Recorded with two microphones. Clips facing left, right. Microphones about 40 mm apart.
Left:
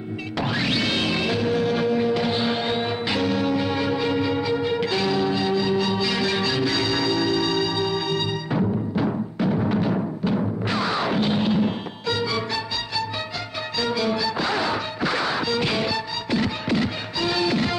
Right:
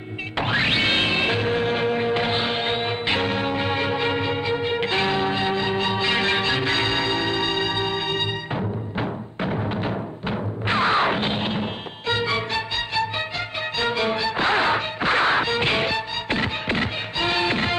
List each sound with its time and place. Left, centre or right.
0.4 s music: right
9.7 s music: right
10.7 s music: right
13.7 s music: right